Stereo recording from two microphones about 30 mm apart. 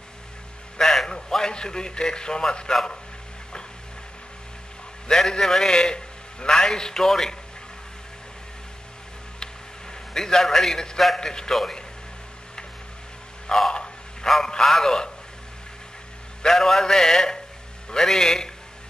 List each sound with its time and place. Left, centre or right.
0.7 s music: centre
1.3 s a man's voice: left
5.0 s a man's voice: left
5.7 s a man's voice: left
10.1 s a man's voice: centre
13.5 s a sound: left
14.6 s a man's voice: centre
14.9 s a sound: centre
16.4 s a sound: centre
16.8 s a man's voice: centre